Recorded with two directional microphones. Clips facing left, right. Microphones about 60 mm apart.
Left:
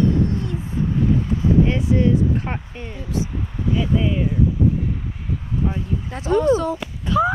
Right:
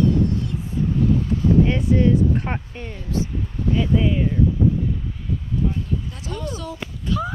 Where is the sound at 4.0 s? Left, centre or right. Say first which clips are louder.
Right 1 dB; centre.